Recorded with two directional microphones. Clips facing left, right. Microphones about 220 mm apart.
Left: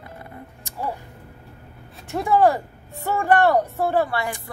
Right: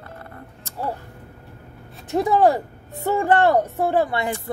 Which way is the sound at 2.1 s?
15° right (ahead or behind).